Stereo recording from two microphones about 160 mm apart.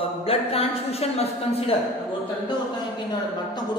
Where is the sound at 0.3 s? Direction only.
40° left (ahead or behind).